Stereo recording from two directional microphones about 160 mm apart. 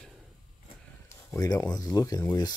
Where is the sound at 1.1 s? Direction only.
20° left (ahead or behind).